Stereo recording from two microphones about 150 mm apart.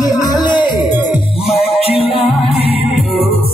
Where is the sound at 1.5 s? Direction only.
40° left (ahead or behind).